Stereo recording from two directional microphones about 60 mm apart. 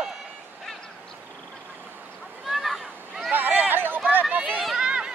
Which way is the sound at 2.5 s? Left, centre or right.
Centre.